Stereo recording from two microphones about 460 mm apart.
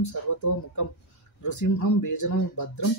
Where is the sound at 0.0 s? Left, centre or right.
Left.